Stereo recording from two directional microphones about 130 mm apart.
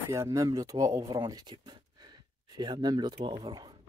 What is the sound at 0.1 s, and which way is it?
Speech, 25° right (ahead or behind).